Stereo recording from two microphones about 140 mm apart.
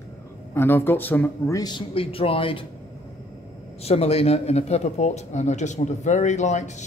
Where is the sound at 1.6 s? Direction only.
30° left (ahead or behind).